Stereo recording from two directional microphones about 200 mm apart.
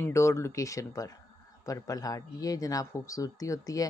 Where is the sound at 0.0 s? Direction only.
15° left (ahead or behind).